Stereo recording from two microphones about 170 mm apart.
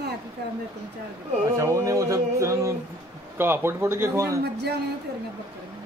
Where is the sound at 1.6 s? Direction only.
20° right (ahead or behind).